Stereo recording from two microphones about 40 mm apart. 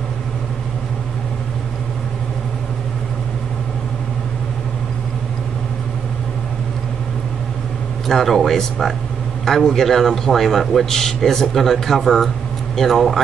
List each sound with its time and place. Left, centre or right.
8.1 s a man's voice: centre